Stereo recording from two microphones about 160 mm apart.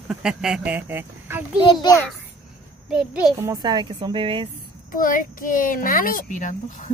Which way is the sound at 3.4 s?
20° right (ahead or behind).